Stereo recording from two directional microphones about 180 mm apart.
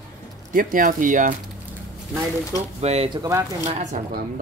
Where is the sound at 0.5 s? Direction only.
50° right (ahead or behind).